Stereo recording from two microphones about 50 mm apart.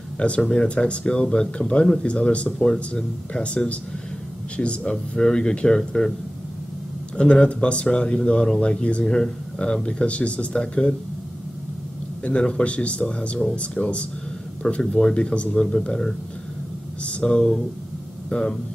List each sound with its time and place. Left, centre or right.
0.4 s speech: centre
7.2 s speech: left
12.2 s speech: left
15.9 s speech: centre
17.0 s speech: left